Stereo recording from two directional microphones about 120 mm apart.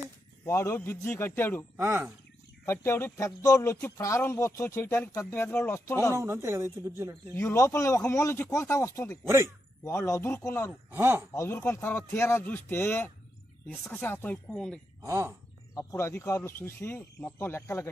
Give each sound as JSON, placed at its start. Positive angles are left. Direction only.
{"t": 0.5, "sound": "speech", "side_deg": 25}
{"t": 1.8, "sound": "speech", "side_deg": -20}
{"t": 2.6, "sound": "speech", "side_deg": 20}
{"t": 6.1, "sound": "speech", "side_deg": -20}
{"t": 7.3, "sound": "speech", "side_deg": 25}
{"t": 10.9, "sound": "speech", "side_deg": -20}
{"t": 11.3, "sound": "speech", "side_deg": 20}
{"t": 15.0, "sound": "speech", "side_deg": -25}
{"t": 15.9, "sound": "speech", "side_deg": 20}